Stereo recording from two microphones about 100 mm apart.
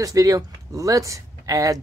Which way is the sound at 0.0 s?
35° right (ahead or behind).